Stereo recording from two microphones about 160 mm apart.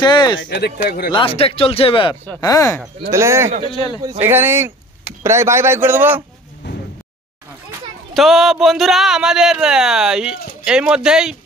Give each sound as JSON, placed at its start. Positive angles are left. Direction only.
{"t": 0.0, "sound": "speech", "side_deg": 25}
{"t": 0.5, "sound": "speech", "side_deg": 90}
{"t": 0.8, "sound": "speech", "side_deg": 75}
{"t": 1.1, "sound": "speech", "side_deg": 35}
{"t": 2.2, "sound": "speech", "side_deg": 20}
{"t": 3.1, "sound": "a man's voice", "side_deg": -15}
{"t": 3.6, "sound": "speech", "side_deg": 30}
{"t": 4.2, "sound": "a man's voice", "side_deg": -15}
{"t": 6.6, "sound": "a sound", "side_deg": 90}
{"t": 8.1, "sound": "speech", "side_deg": 0}